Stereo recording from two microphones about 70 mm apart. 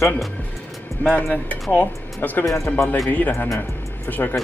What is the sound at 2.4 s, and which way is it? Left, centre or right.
Speech, left.